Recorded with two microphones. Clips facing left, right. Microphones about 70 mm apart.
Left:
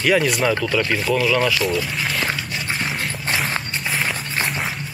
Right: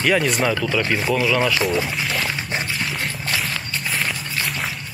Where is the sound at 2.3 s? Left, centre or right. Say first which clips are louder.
Right 2 dB; right.